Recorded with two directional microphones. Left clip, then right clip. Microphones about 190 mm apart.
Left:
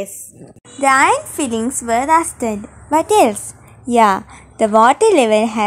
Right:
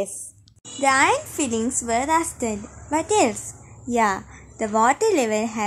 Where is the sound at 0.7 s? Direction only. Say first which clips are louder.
Left 6 dB; 20° left (ahead or behind).